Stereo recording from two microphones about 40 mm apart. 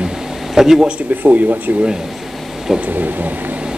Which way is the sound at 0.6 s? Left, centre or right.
Centre.